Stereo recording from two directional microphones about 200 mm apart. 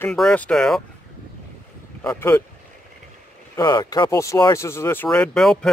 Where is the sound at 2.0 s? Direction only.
10° left (ahead or behind).